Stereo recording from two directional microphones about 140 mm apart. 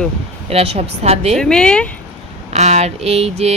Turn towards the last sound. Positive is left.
turn(degrees=-50)  # may be behind; listen again after turning